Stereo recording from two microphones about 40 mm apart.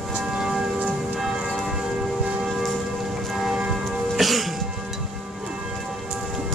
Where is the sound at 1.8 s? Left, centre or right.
Right.